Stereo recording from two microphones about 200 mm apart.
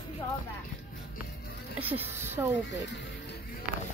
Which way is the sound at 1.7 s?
10° right (ahead or behind).